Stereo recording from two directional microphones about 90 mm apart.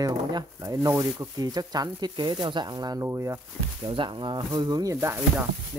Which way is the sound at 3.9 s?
65° right (ahead or behind).